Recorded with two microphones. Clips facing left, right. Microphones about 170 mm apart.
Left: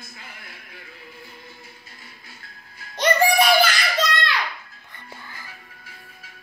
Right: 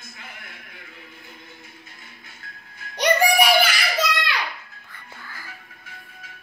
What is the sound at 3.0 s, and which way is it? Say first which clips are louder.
Child singing: even; 10° right (ahead or behind).